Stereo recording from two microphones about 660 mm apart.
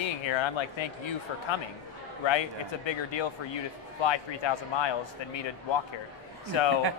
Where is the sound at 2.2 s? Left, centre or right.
Left.